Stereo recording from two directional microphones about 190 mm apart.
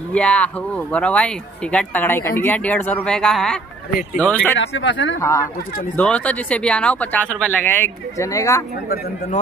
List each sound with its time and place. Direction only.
0.1 s speech: 5° left (ahead or behind)
4.6 s speech: 75° left (ahead or behind)
5.9 s speech: 5° left (ahead or behind)
8.9 s a man's voice: 50° left (ahead or behind)